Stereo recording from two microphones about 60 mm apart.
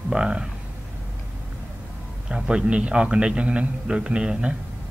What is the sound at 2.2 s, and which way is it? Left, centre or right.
A man's voice, centre.